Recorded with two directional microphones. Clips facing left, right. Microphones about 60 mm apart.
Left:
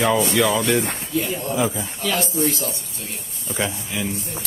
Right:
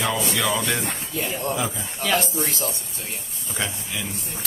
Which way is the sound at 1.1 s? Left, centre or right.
Right.